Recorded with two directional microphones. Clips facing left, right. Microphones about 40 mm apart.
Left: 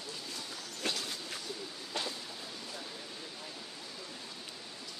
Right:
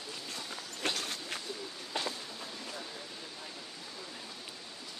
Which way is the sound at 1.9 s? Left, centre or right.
Centre.